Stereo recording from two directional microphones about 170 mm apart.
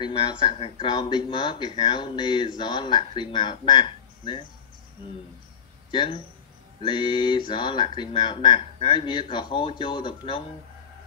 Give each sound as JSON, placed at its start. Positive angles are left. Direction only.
{"t": 0.0, "sound": "speech", "side_deg": 30}
{"t": 5.9, "sound": "speech", "side_deg": 30}